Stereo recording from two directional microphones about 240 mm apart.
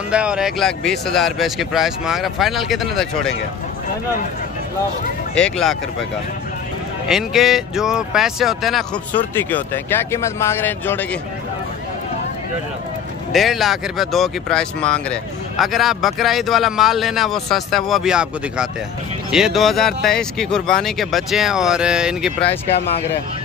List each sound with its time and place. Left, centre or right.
0.1 s speech: centre
5.3 s speech: centre
7.1 s speech: centre
13.3 s speech: centre